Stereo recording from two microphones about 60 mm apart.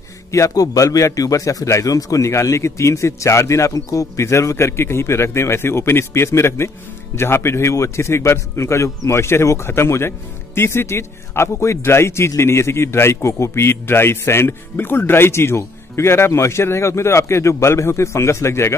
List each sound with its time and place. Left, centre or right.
0.3 s a man's voice: left